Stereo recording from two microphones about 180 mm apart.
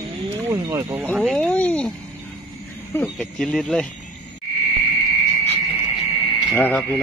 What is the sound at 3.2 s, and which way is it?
Speech, 5° left (ahead or behind).